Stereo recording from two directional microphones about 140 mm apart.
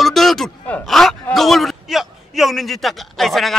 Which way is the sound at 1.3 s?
Centre (ahead or behind).